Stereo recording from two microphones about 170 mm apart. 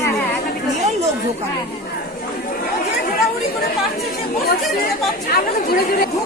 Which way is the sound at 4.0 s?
65° left (ahead or behind).